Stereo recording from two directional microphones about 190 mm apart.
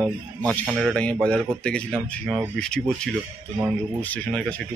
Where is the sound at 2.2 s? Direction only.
10° right (ahead or behind).